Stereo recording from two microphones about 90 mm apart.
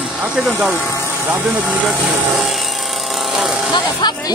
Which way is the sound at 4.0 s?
55° left (ahead or behind).